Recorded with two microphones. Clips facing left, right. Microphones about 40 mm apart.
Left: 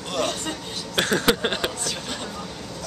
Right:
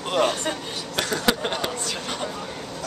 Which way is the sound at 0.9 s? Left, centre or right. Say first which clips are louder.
Left 3 dB; left.